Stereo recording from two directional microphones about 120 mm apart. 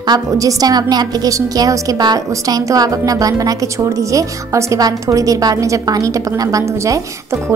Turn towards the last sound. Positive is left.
turn(degrees=-25)  # may be behind; listen again after turning